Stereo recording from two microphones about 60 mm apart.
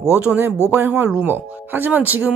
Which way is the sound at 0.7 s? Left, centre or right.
Right.